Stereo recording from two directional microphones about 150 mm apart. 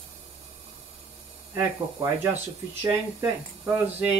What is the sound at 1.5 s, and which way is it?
Speech, 15° right (ahead or behind).